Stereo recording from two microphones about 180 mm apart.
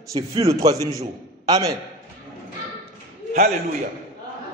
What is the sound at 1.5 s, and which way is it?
Speech, 20° right (ahead or behind).